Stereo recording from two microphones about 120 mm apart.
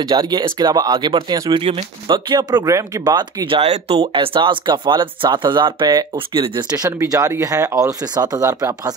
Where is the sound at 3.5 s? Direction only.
55° right (ahead or behind).